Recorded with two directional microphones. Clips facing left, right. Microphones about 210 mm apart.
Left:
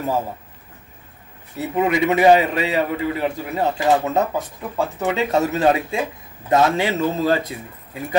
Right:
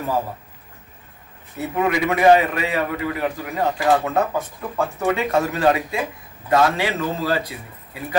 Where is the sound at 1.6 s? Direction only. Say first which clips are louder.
Left 2 dB; 20° left (ahead or behind).